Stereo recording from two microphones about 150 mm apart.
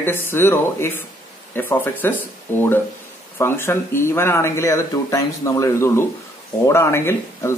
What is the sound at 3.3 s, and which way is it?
Speech, 15° left (ahead or behind).